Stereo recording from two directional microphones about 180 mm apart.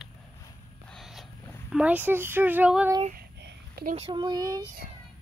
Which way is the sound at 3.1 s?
55° right (ahead or behind).